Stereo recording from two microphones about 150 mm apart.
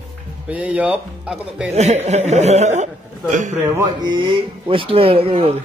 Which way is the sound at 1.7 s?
45° right (ahead or behind).